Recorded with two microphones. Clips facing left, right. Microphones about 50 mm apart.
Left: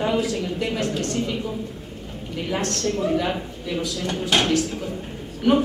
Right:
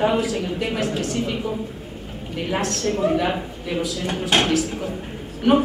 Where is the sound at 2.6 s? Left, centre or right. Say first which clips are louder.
Right 3 dB; centre.